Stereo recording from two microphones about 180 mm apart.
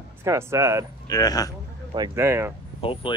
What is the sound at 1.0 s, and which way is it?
Speech, 20° left (ahead or behind).